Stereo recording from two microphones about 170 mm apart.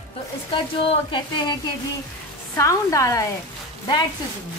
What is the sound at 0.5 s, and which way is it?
Speech, 30° left (ahead or behind).